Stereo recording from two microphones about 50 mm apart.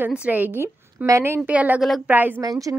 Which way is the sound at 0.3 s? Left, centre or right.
Right.